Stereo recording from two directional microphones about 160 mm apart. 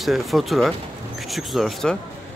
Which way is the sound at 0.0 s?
Centre (ahead or behind).